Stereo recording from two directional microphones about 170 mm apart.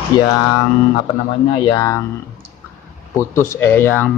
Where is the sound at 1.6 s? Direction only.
25° left (ahead or behind).